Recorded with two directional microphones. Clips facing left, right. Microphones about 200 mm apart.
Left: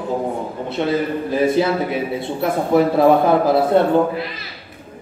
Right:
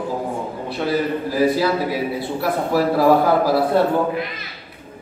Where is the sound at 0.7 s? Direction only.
20° left (ahead or behind).